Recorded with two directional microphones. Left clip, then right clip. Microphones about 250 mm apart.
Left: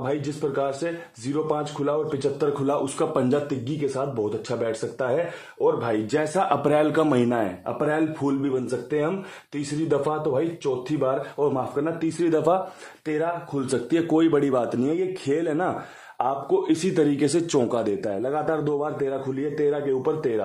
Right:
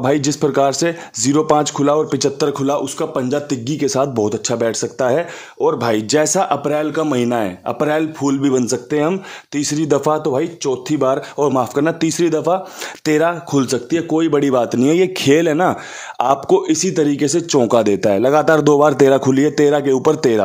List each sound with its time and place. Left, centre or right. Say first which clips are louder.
0.0 s speech: right 11 dB; right
3.6 s speech: right 9 dB; right
6.5 s speech: right 3 dB; centre
7.2 s a man's voice: right 5 dB; right
12.3 s speech: right 2 dB; centre
13.0 s speech: right 10 dB; right
13.7 s a man's voice: right 5 dB; centre
16.7 s speech: right 6 dB; centre
17.6 s a man's voice: right 11 dB; right